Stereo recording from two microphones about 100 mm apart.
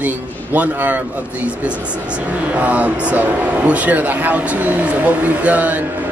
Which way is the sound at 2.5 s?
15° right (ahead or behind).